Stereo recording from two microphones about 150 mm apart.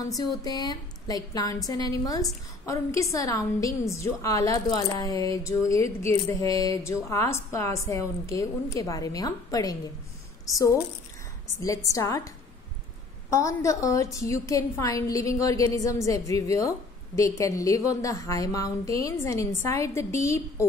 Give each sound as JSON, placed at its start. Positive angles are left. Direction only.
{"t": 0.4, "sound": "a woman's voice", "side_deg": 25}
{"t": 11.6, "sound": "a woman's voice", "side_deg": 20}
{"t": 13.3, "sound": "a woman's voice", "side_deg": 20}